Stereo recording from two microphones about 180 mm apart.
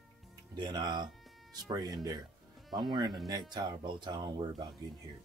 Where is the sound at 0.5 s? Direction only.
25° right (ahead or behind).